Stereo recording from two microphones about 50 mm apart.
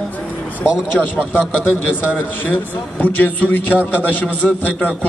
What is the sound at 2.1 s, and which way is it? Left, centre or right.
A man's voice, left.